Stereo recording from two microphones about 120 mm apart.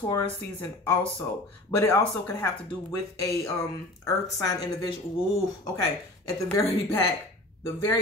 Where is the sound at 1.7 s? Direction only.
20° left (ahead or behind).